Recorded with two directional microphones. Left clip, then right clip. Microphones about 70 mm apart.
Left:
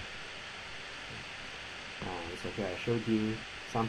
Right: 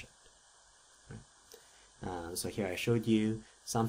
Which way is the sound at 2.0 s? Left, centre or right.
Right.